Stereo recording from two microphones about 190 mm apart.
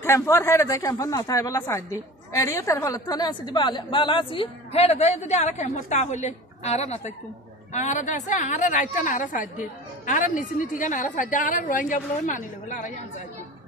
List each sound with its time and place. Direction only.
0.0 s a woman's voice: 15° left (ahead or behind); by 12.9 s 40° left (ahead or behind)